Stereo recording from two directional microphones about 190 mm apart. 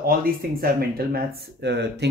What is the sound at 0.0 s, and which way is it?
Speech, 50° right (ahead or behind).